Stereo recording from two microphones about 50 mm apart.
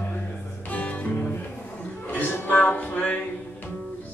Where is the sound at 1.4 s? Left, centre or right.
Left.